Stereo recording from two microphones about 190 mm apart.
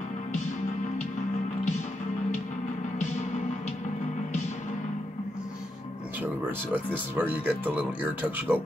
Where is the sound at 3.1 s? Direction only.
40° left (ahead or behind).